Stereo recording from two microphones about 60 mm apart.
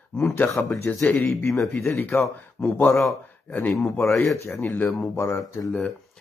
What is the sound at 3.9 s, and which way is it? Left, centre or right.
Speech, left.